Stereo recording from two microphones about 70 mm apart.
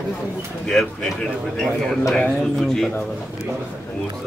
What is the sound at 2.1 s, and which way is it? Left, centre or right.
Speech, centre.